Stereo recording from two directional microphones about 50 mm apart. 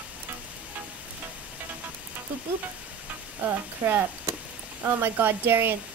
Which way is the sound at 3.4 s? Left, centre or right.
Right.